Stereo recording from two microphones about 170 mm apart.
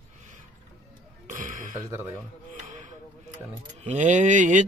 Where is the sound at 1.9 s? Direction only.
15° right (ahead or behind).